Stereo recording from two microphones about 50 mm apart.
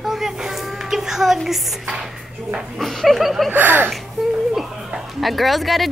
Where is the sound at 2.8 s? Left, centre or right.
Centre.